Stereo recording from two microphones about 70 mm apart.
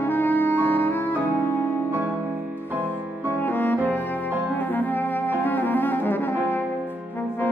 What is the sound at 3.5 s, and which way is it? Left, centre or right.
Music, left.